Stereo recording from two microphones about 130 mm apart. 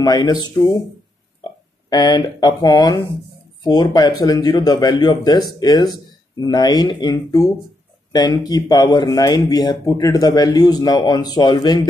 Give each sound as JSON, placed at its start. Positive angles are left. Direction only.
{"t": 0.0, "sound": "speech", "side_deg": 30}